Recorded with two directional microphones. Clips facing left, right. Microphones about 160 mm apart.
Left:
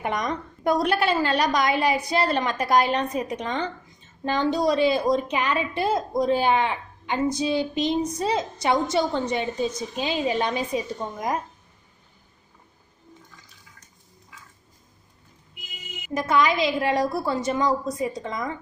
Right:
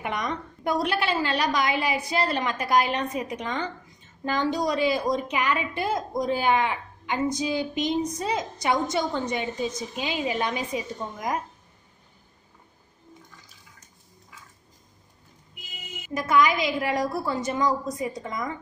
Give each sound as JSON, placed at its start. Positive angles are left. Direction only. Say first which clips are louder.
{"t": 0.0, "sound": "a woman's voice", "louder": "left 3 dB", "side_deg": 40}
{"t": 16.1, "sound": "a woman's voice", "louder": "even", "side_deg": 30}